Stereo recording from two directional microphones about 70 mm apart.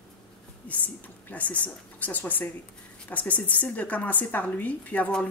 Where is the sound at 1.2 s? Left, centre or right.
Left.